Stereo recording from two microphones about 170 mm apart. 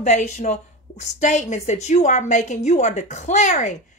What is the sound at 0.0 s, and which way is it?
A woman's voice, 45° left (ahead or behind).